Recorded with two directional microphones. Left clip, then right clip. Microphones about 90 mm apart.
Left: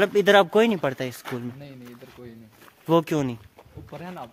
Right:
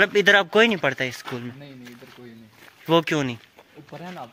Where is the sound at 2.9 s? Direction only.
40° left (ahead or behind).